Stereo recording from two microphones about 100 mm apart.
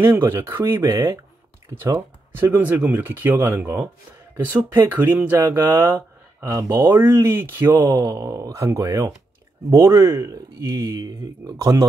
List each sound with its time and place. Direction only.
0.0 s speech: 25° right (ahead or behind)
6.9 s speech: 20° right (ahead or behind)
8.0 s speech: 35° right (ahead or behind)